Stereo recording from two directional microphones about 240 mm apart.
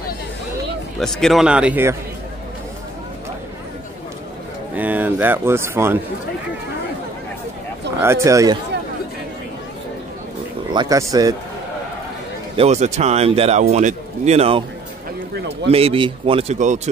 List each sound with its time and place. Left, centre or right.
1.0 s speech: centre
4.7 s speech: centre
8.0 s speech: centre
10.7 s speech: centre
12.5 s speech: right
15.3 s speech: right
15.7 s speech: right